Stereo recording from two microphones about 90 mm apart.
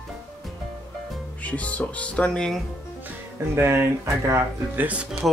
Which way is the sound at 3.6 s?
25° right (ahead or behind).